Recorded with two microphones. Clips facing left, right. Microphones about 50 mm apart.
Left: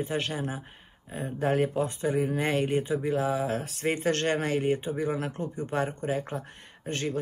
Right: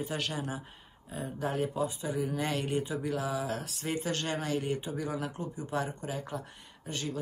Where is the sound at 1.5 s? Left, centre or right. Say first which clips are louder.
Left 6 dB; left.